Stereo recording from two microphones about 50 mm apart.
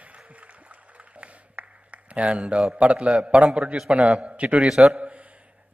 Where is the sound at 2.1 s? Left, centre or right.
Right.